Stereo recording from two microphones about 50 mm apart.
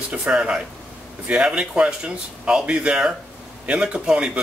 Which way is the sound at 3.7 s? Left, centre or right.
Centre.